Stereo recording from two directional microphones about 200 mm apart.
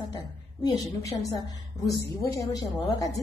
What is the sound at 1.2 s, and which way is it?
A woman's voice, 20° left (ahead or behind).